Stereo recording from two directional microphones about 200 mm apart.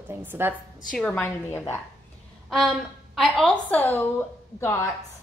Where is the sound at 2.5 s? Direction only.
Centre (ahead or behind).